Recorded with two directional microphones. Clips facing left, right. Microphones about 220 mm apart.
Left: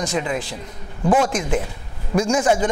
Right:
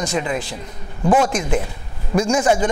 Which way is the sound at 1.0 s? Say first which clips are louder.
Right 1 dB; 30° right (ahead or behind).